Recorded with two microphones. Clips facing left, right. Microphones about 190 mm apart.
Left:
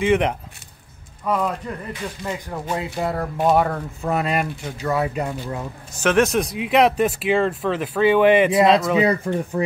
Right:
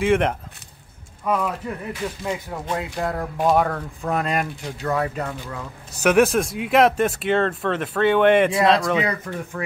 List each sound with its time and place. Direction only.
0.0 s speech: centre (ahead or behind)
1.9 s speech: 5° right (ahead or behind); by 5.3 s 10° left (ahead or behind)
6.0 s speech: 10° right (ahead or behind)
9.0 s speech: 30° left (ahead or behind)